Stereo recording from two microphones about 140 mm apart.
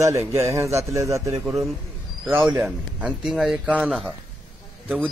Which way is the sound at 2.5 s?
10° right (ahead or behind).